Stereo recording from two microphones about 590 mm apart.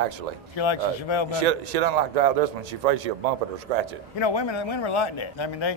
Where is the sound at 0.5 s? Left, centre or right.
Left.